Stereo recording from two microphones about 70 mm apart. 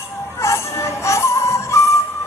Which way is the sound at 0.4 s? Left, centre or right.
Left.